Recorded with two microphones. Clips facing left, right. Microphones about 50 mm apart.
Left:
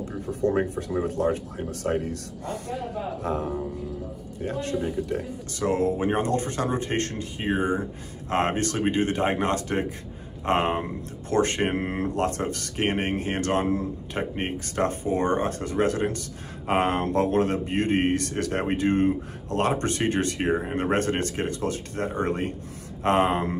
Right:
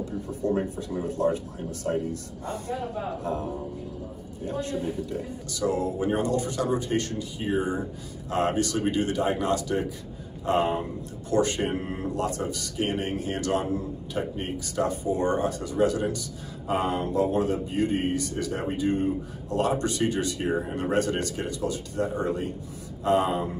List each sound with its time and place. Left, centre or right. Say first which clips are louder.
0.3 s speech: left 4 dB; left
4.5 s speech: left 1 dB; left